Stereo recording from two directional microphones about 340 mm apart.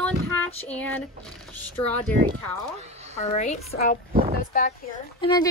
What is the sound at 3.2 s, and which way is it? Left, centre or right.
Speech, centre.